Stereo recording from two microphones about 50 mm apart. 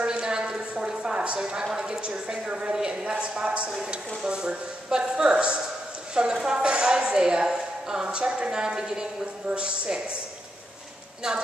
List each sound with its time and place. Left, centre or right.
0.0 s a sound: centre
2.0 s a woman's voice: centre
11.2 s a woman's voice: centre